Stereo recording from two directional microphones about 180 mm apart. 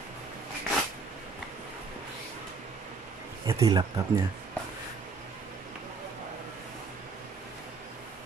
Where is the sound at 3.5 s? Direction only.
20° right (ahead or behind).